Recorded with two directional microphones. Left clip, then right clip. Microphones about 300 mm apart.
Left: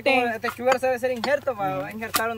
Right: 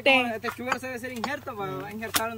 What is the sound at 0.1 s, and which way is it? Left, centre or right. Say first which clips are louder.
Speech: left 1 dB; centre.